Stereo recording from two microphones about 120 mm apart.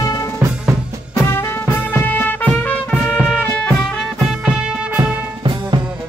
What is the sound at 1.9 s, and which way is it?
Music, 15° left (ahead or behind).